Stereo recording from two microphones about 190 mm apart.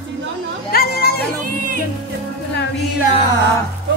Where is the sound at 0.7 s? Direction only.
55° left (ahead or behind).